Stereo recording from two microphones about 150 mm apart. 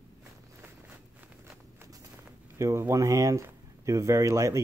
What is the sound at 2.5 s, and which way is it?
Speech, 20° right (ahead or behind).